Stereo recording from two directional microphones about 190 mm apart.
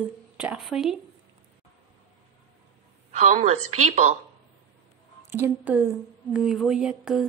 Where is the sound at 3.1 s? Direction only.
35° right (ahead or behind).